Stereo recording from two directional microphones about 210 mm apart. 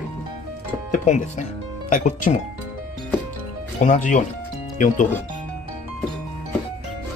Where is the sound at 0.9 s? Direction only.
35° left (ahead or behind).